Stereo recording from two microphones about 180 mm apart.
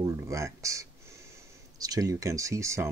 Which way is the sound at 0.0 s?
15° right (ahead or behind).